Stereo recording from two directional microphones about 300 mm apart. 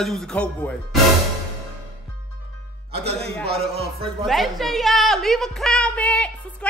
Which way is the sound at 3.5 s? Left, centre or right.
Centre.